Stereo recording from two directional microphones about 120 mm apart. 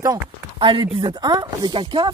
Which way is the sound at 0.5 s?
45° right (ahead or behind).